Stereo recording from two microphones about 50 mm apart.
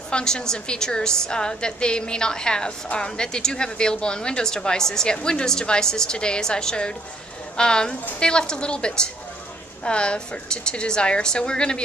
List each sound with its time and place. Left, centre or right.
0.1 s a woman's voice: centre